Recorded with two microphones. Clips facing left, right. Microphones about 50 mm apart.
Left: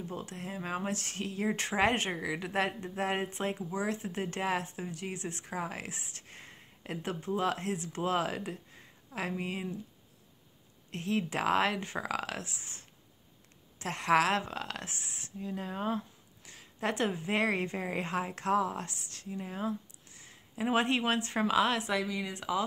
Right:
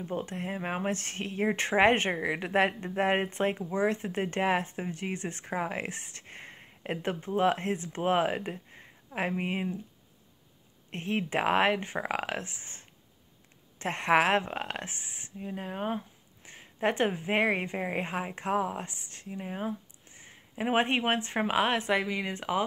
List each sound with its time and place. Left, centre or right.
0.0 s speech: right
10.9 s a woman's voice: right